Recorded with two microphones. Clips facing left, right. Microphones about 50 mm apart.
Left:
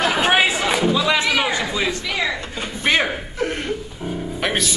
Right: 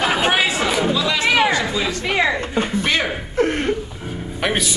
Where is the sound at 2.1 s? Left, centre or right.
Right.